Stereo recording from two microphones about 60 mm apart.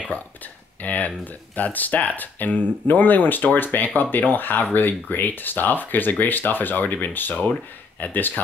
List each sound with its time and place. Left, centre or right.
0.8 s speech: left